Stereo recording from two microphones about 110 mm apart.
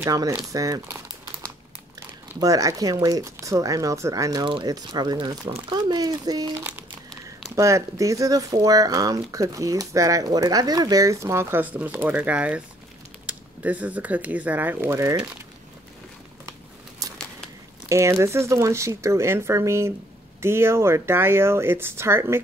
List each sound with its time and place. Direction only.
0.0 s speech: 30° right (ahead or behind)
2.4 s speech: 30° right (ahead or behind)
7.5 s speech: 30° right (ahead or behind)
17.0 s crumpling: 35° right (ahead or behind)
17.8 s speech: 25° right (ahead or behind)